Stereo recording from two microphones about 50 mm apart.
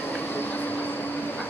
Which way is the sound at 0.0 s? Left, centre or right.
Left.